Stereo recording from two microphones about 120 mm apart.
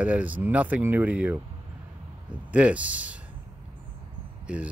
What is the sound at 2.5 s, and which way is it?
Speech, 10° right (ahead or behind).